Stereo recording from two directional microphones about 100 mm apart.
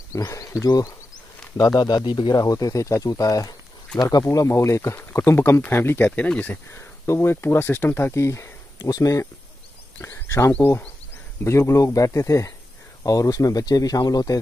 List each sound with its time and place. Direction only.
0.1 s speech: 35° left (ahead or behind); by 6.5 s 10° left (ahead or behind)
6.5 s speech: 25° left (ahead or behind)
8.7 s speech: 40° left (ahead or behind)
9.9 s a sound: 25° left (ahead or behind)
10.5 s speech: 15° left (ahead or behind)
11.4 s speech: 30° left (ahead or behind)